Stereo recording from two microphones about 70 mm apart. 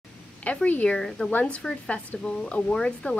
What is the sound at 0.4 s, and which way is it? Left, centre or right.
A woman's voice, left.